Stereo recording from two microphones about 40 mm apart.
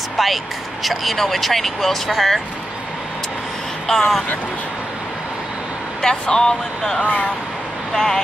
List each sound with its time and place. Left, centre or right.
0.2 s speech: centre
3.8 s speech: centre
6.0 s speech: centre
7.0 s speech: left
7.9 s speech: centre